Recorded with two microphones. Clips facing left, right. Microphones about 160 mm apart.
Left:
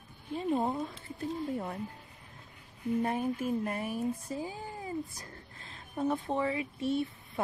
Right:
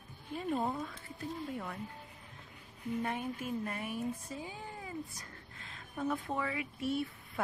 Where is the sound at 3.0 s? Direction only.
35° left (ahead or behind).